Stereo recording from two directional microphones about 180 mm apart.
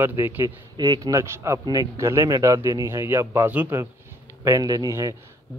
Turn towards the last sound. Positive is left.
turn(degrees=-20)  # may be behind; listen again after turning